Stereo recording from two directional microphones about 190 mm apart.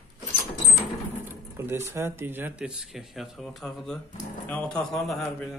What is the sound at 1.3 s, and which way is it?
Speech, 15° right (ahead or behind).